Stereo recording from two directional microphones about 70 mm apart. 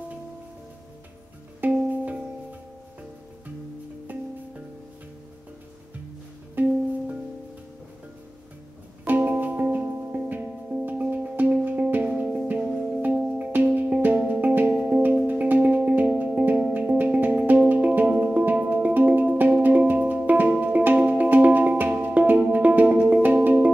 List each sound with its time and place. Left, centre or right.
1.6 s music: right
6.5 s music: right
9.0 s music: right